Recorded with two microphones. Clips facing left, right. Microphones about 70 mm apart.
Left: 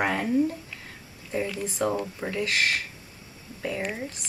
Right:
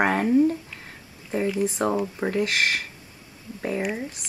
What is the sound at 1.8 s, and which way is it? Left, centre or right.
Speech, right.